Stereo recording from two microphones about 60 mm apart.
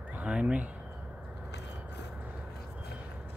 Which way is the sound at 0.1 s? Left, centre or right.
Right.